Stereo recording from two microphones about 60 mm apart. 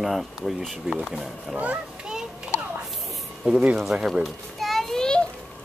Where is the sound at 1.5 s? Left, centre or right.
Right.